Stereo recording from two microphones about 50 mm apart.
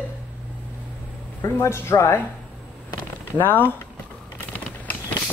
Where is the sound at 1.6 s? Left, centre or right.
Left.